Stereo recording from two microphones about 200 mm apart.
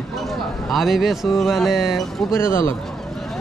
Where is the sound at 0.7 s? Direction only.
Centre (ahead or behind).